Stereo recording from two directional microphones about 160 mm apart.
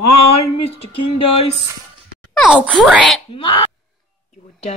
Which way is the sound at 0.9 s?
35° left (ahead or behind).